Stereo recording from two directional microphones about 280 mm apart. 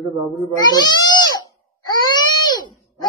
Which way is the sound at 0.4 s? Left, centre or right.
Centre.